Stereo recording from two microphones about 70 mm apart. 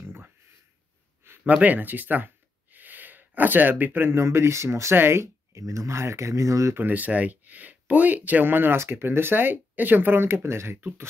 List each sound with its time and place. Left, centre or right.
0.0 s a sound: right
1.5 s speech: right
6.8 s speech: right